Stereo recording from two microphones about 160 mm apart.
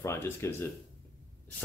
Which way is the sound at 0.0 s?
15° left (ahead or behind).